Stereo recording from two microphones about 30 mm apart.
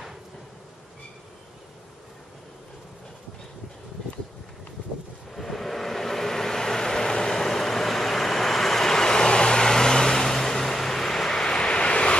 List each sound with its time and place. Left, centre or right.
5.3 s vehicle: centre
8.9 s vehicle: left